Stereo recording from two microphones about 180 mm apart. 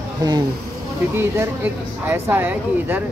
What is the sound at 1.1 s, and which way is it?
Speech, 15° right (ahead or behind).